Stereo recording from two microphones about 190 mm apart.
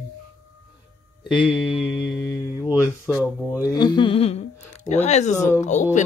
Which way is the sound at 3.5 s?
20° left (ahead or behind).